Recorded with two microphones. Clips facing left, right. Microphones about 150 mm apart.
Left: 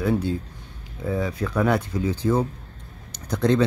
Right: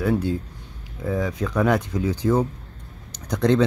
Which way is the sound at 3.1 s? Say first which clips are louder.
Right 1 dB; 15° right (ahead or behind).